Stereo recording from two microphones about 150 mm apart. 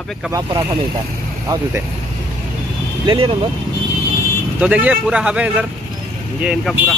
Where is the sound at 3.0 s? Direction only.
35° right (ahead or behind).